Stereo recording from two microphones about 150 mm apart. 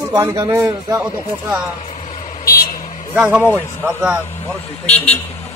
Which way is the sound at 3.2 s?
10° right (ahead or behind).